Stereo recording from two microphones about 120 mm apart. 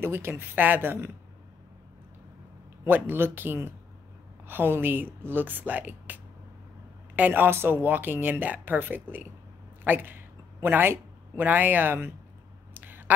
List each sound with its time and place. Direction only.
0.0 s speech: 20° right (ahead or behind)
2.8 s speech: 20° right (ahead or behind)
12.7 s a sound: 15° right (ahead or behind)